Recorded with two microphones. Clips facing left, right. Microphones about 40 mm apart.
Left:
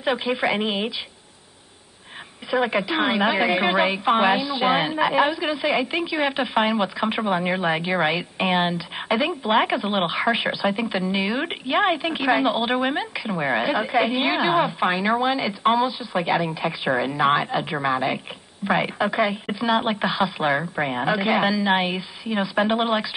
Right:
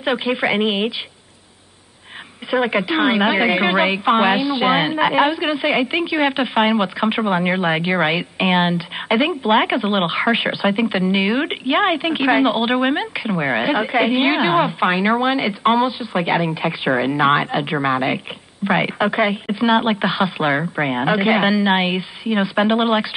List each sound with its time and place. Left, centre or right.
0.0 s a woman's voice: centre
2.6 s a woman's voice: centre